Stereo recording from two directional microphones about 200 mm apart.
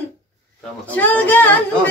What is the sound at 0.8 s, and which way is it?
Speech, 10° left (ahead or behind).